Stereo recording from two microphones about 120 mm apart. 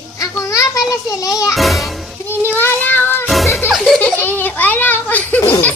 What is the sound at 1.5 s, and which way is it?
Speech, centre (ahead or behind).